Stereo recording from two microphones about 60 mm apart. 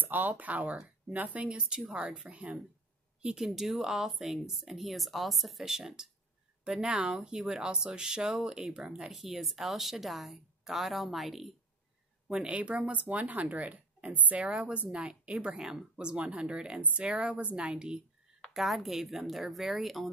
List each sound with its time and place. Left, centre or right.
0.0 s speech: right
3.2 s speech: centre
9.1 s speech: centre
12.3 s speech: centre
18.5 s speech: centre